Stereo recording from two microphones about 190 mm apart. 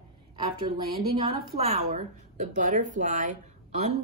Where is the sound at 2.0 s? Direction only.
40° right (ahead or behind).